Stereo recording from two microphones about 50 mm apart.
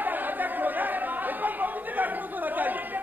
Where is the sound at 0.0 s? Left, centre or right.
Right.